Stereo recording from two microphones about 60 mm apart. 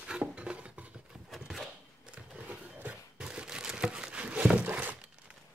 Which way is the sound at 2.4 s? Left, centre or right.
Right.